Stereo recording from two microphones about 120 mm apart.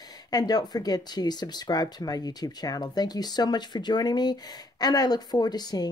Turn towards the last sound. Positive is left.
turn(degrees=35)  # may be behind; listen again after turning